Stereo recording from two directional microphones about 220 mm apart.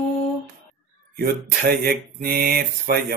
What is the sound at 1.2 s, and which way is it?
Speech, 45° right (ahead or behind).